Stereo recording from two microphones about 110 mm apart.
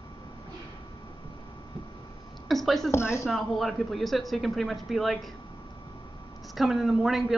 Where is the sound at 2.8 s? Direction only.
25° left (ahead or behind).